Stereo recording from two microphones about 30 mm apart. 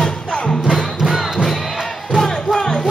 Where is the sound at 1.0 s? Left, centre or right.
Centre.